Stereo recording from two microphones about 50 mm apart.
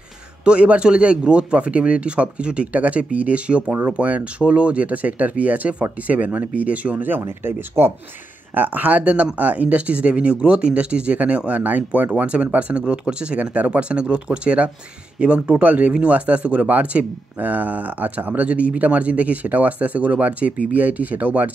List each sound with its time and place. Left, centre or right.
0.5 s speech: right
8.5 s speech: right